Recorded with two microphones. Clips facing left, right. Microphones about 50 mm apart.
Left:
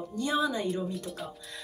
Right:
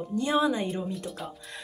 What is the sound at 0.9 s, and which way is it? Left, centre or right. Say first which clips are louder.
Speech: right 1 dB; centre.